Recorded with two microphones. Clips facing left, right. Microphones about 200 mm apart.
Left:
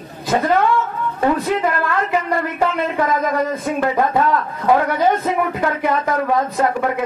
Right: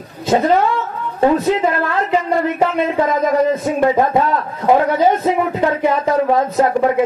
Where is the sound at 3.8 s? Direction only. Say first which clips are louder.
Right 3 dB; 25° right (ahead or behind).